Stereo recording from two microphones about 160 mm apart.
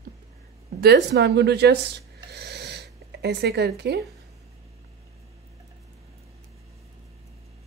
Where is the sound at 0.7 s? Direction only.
85° right.